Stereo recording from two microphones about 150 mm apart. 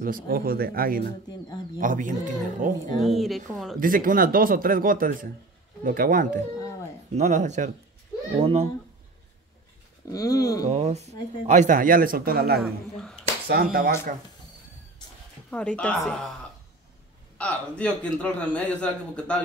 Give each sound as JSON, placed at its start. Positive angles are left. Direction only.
{"t": 0.0, "sound": "speech", "side_deg": -75}
{"t": 1.8, "sound": "speech", "side_deg": -60}
{"t": 3.0, "sound": "speech", "side_deg": 0}
{"t": 3.8, "sound": "a man's voice", "side_deg": -70}
{"t": 8.4, "sound": "a child's voice", "side_deg": -40}
{"t": 10.0, "sound": "speech", "side_deg": 25}
{"t": 10.7, "sound": "a man's voice", "side_deg": -50}
{"t": 12.6, "sound": "speech", "side_deg": 0}
{"t": 13.5, "sound": "a man's voice", "side_deg": -85}
{"t": 15.5, "sound": "a man's voice", "side_deg": 10}
{"t": 17.4, "sound": "a man's voice", "side_deg": 10}